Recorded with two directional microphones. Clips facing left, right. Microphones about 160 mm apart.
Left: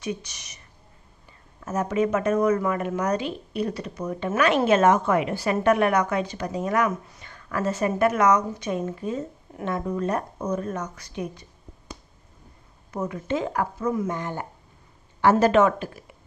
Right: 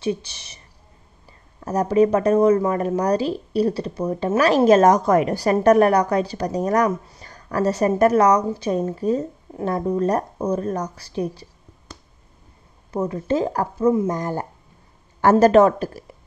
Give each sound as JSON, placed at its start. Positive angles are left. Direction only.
{"t": 0.0, "sound": "speech", "side_deg": -30}
{"t": 1.6, "sound": "speech", "side_deg": -35}
{"t": 12.9, "sound": "speech", "side_deg": -30}